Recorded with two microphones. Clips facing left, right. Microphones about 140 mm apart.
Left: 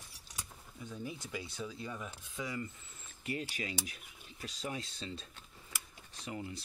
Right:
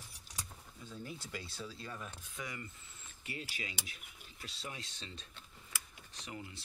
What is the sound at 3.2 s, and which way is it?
Speech, 45° left (ahead or behind).